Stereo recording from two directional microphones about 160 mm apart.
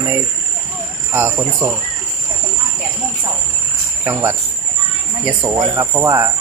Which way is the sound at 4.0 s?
15° right (ahead or behind).